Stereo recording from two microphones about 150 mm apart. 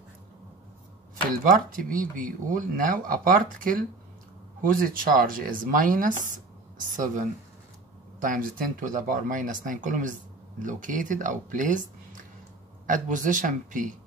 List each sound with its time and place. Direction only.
1.4 s speech: 65° right (ahead or behind)
8.2 s speech: 65° right (ahead or behind)
12.8 s speech: 60° right (ahead or behind)